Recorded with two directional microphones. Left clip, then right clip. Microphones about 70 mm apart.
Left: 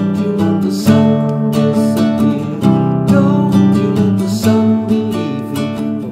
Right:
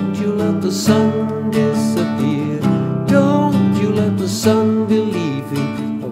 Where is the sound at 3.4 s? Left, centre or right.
Centre.